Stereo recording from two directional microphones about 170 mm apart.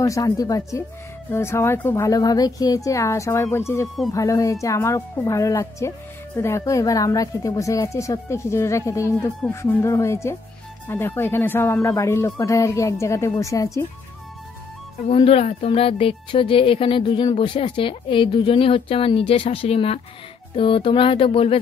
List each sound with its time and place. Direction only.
0.0 s speech: 20° left (ahead or behind)
15.0 s speech: 35° left (ahead or behind)